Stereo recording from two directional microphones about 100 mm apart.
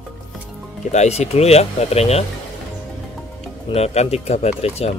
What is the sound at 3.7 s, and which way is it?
Speech, 90° left.